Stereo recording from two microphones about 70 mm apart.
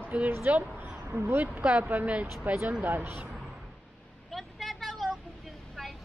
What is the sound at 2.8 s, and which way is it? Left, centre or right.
Speech, right.